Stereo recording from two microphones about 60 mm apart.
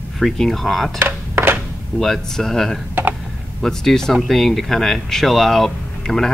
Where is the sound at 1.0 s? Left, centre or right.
Right.